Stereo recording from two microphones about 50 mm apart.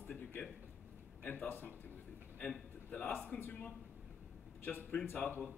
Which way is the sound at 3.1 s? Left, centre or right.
Left.